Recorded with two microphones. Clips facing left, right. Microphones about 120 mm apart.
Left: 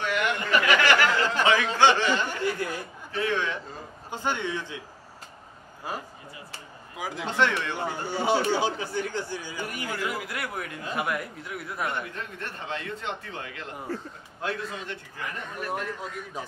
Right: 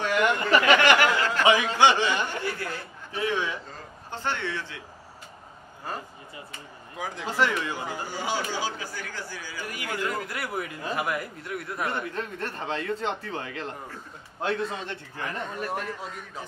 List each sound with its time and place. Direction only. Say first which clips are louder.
0.0 s a sound: right 3 dB; 40° right (ahead or behind)
0.7 s a sound: right 2 dB; 20° right (ahead or behind)
1.4 s speech: right 1 dB; 15° right (ahead or behind)
2.2 s speech: left 3 dB; 15° left (ahead or behind)
3.1 s speech: even; 15° right (ahead or behind)
4.1 s speech: left 1 dB; 15° left (ahead or behind)
7.0 s a man's voice: left 1 dB; 5° left (ahead or behind)
8.1 s speech: left 7 dB; 25° left (ahead or behind)
10.0 s a man's voice: right 1 dB; 5° left (ahead or behind)
12.4 s a man's voice: right 4 dB; 35° right (ahead or behind)
15.7 s a man's voice: even; centre (ahead or behind)